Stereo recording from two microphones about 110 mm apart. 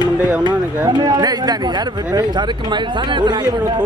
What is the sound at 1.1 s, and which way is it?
Speech, 35° right (ahead or behind).